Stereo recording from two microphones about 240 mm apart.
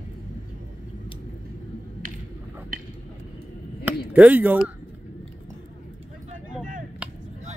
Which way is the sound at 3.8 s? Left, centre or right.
Centre.